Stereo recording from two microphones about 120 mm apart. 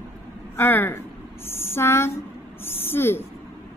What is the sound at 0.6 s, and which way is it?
A woman's voice, 15° left (ahead or behind).